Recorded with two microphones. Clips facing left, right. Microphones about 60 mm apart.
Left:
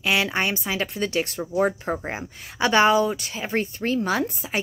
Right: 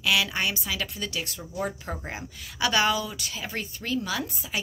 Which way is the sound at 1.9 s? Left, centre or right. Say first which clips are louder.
Left 7 dB; left.